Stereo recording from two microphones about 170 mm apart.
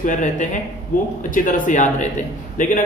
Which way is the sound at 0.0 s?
45° left (ahead or behind).